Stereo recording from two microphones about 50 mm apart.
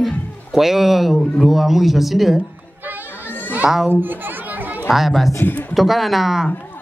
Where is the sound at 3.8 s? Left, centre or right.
Right.